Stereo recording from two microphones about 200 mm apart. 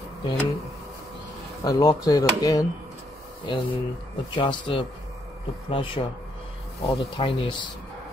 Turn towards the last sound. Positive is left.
turn(degrees=25)  # may be behind; listen again after turning